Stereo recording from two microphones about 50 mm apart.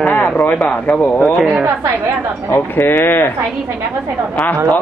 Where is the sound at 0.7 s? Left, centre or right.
Left.